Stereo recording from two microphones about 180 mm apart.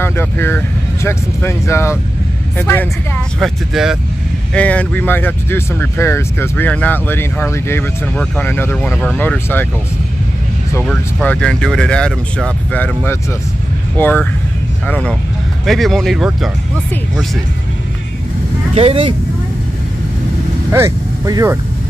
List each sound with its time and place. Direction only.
0.0 s speech: 15° left (ahead or behind)
3.3 s speech: centre (ahead or behind)
4.6 s speech: 5° left (ahead or behind)
10.7 s speech: 5° left (ahead or behind)
18.8 s speech: 30° right (ahead or behind)
20.7 s speech: 15° right (ahead or behind)